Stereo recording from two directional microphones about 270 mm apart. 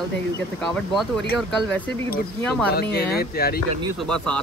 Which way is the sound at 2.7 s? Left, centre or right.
Left.